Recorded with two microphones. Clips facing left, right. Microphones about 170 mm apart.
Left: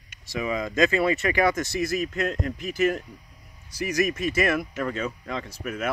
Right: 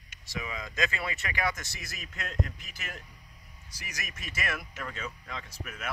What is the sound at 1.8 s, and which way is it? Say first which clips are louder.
Speech: left 17 dB; 50° left (ahead or behind).